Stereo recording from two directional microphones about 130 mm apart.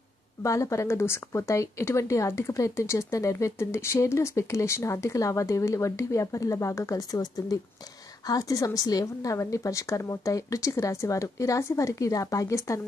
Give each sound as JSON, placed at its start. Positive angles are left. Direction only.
{"t": 0.4, "sound": "speech", "side_deg": 25}